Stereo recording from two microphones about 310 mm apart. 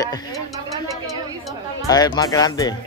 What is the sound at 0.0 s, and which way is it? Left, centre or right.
Speech, centre.